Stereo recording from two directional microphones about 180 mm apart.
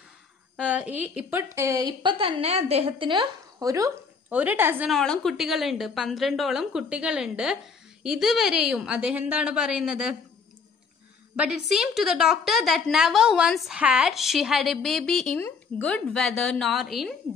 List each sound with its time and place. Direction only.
0.6 s a woman's voice: 5° right (ahead or behind)
4.9 s a woman's voice: 5° left (ahead or behind)
11.3 s a woman's voice: 5° right (ahead or behind)